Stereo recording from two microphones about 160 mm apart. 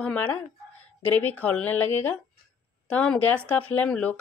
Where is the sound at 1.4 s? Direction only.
10° left (ahead or behind).